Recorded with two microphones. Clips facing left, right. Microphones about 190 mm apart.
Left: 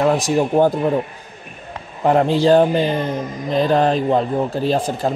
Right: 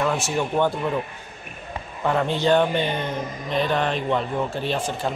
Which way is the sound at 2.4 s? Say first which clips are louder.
Left 4 dB; 35° left (ahead or behind).